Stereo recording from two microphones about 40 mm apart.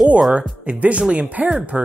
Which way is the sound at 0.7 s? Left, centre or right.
Right.